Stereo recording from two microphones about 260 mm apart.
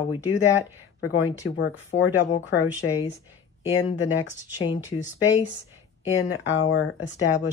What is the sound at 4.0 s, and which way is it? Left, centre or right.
Speech, left.